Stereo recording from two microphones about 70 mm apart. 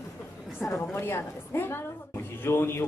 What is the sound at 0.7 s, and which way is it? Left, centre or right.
A woman's voice, left.